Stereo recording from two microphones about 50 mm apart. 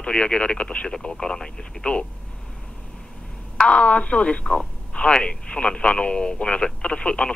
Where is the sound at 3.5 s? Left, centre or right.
Left.